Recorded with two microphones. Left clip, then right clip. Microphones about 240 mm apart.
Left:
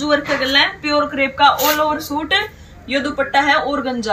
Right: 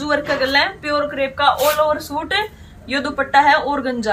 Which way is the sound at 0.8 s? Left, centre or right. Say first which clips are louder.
Left 2 dB; right.